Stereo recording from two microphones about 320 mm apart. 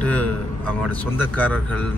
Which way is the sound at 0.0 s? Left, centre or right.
Centre.